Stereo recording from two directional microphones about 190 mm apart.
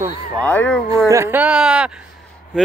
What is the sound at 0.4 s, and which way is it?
Speech, 10° left (ahead or behind).